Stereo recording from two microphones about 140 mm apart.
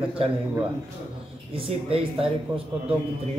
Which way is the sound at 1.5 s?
45° right (ahead or behind).